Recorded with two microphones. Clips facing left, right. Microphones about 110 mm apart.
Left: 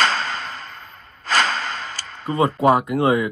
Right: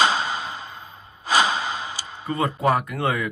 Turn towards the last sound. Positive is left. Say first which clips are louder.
# left 5 dB
turn(degrees=20)  # may be behind; listen again after turning